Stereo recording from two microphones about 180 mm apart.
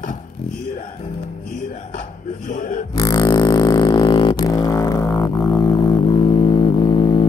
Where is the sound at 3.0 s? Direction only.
20° left (ahead or behind).